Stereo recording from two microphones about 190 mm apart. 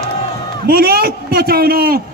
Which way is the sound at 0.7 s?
50° right (ahead or behind).